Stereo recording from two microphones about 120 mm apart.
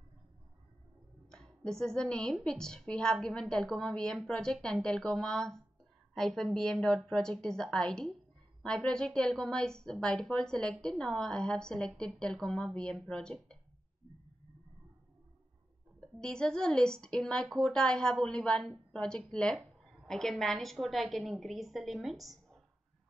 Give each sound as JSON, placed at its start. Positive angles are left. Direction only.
{"t": 1.3, "sound": "a woman's voice", "side_deg": 5}
{"t": 16.0, "sound": "a woman's voice", "side_deg": 5}